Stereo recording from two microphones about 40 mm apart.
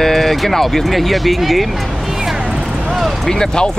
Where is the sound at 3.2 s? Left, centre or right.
Centre.